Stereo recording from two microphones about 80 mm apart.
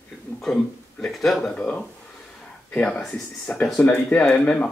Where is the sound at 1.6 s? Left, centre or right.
Centre.